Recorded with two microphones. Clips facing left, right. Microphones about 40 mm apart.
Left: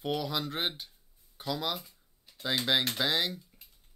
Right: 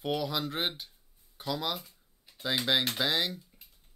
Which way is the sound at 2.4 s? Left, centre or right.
Centre.